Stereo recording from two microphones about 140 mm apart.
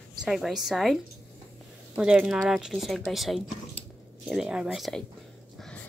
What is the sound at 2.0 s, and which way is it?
Speech, 5° right (ahead or behind).